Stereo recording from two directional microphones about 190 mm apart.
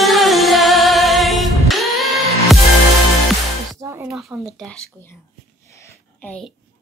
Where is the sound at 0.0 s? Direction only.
Centre (ahead or behind).